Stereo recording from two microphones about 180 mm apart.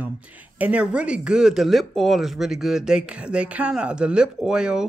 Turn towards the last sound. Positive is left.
turn(degrees=-5)  # may be behind; listen again after turning